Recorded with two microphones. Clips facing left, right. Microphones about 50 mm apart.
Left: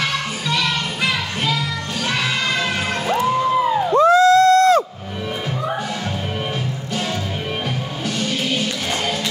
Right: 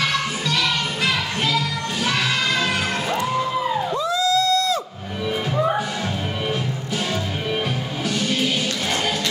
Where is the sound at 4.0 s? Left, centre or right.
Left.